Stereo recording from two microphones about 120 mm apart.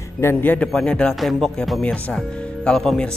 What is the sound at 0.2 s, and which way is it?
Speech, 15° left (ahead or behind).